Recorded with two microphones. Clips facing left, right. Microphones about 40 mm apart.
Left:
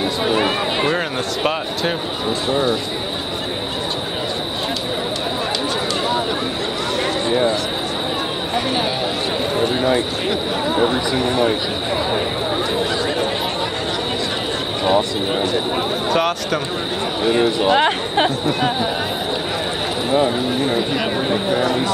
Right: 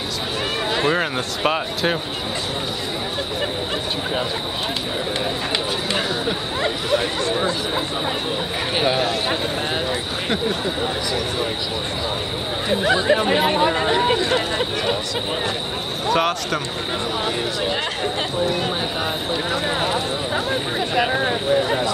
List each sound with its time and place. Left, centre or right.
0.8 s speech: centre
12.9 s speech: right
16.1 s speech: centre
17.6 s speech: left